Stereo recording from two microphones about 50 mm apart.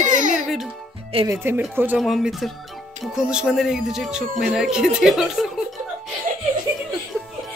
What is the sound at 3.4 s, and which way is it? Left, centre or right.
Speech, centre.